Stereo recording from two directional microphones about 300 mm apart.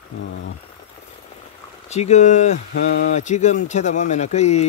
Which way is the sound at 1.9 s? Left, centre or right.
Left.